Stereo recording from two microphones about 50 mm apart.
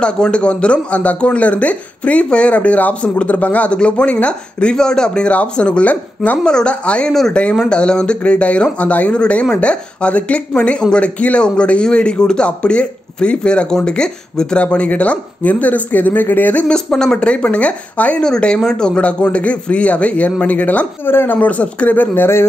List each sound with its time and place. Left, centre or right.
0.0 s speech: centre
6.4 s speech: centre
7.1 s speech: centre
14.6 s speech: left
16.6 s speech: centre; by 18.2 s left
18.2 s speech: centre; by 21.1 s left
21.1 s speech: left
21.4 s speech: left